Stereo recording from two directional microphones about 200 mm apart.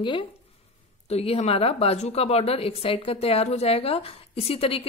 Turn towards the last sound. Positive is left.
turn(degrees=30)  # may be behind; listen again after turning